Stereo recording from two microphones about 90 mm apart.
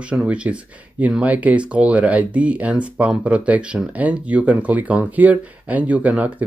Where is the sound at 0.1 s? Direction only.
10° right (ahead or behind).